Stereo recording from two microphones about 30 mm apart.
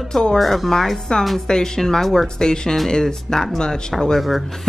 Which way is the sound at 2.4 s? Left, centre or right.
Left.